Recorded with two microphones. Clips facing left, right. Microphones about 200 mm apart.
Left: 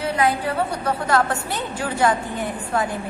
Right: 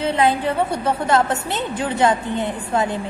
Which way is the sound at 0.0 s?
25° right (ahead or behind).